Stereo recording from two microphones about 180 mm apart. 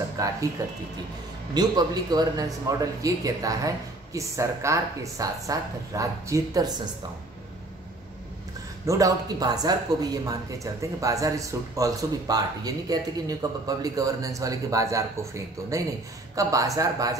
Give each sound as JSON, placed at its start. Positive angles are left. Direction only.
{"t": 0.2, "sound": "speech", "side_deg": -20}
{"t": 8.8, "sound": "speech", "side_deg": -20}